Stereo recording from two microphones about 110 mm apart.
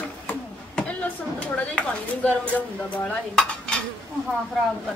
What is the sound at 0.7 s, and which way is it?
Speech, 10° left (ahead or behind).